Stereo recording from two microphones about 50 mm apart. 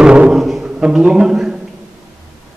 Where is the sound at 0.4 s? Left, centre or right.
Centre.